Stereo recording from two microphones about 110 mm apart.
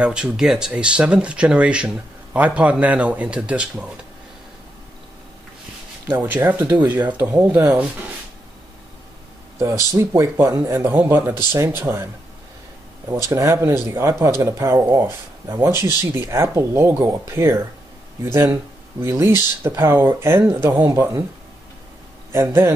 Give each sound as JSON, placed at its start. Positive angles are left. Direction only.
{"t": 0.0, "sound": "speech", "side_deg": -10}
{"t": 6.0, "sound": "speech", "side_deg": -15}
{"t": 7.4, "sound": "speech", "side_deg": -15}
{"t": 9.6, "sound": "speech", "side_deg": -25}
{"t": 13.3, "sound": "speech", "side_deg": -25}
{"t": 22.3, "sound": "speech", "side_deg": -20}